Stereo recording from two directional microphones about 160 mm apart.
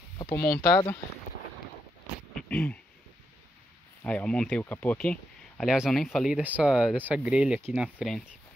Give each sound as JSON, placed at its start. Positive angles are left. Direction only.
{"t": 0.6, "sound": "speech", "side_deg": 25}
{"t": 2.3, "sound": "a sound", "side_deg": 10}
{"t": 4.0, "sound": "speech", "side_deg": 5}